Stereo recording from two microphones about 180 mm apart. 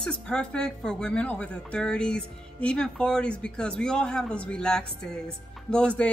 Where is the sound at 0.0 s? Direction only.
5° left (ahead or behind).